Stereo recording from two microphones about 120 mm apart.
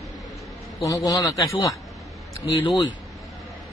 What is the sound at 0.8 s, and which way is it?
Speech, 30° left (ahead or behind).